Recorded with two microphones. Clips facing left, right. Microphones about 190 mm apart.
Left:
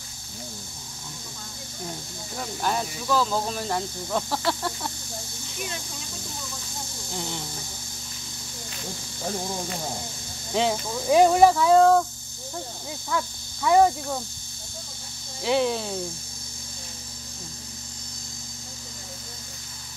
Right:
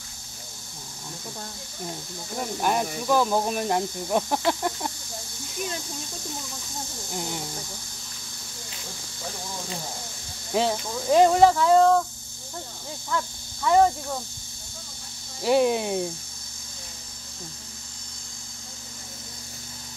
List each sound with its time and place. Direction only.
2.6 s speech: 15° right (ahead or behind)
7.1 s snake: 5° right (ahead or behind)
10.7 s speech: 10° left (ahead or behind)
13.1 s speech: 10° left (ahead or behind)
15.4 s speech: 10° right (ahead or behind)